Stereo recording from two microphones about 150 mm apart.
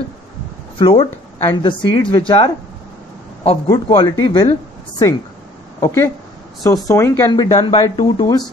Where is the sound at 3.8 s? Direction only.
30° left (ahead or behind).